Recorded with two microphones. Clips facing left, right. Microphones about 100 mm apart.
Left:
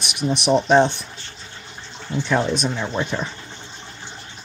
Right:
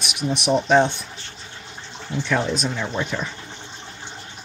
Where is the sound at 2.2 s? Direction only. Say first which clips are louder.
Left 2 dB; 25° left (ahead or behind).